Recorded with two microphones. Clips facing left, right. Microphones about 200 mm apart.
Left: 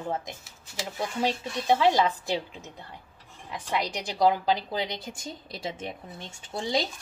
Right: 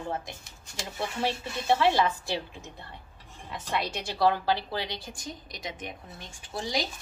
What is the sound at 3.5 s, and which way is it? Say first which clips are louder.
A woman's voice: left 1 dB; 15° left (ahead or behind).